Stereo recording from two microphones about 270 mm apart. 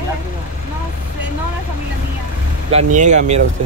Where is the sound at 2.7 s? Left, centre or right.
Right.